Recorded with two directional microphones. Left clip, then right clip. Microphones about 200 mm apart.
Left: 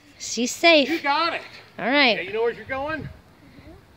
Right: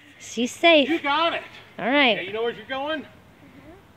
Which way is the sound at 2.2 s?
50° right (ahead or behind).